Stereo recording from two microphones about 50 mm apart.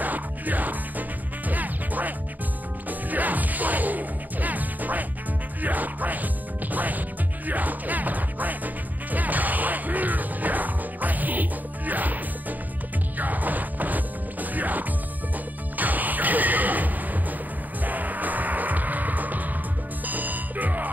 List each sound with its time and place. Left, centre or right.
0.0 s music: right